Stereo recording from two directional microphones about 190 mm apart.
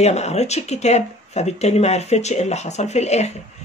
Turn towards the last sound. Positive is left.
turn(degrees=35)  # may be behind; listen again after turning